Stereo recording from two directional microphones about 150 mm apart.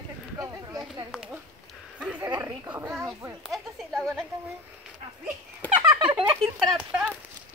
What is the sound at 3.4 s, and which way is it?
Speech, centre (ahead or behind).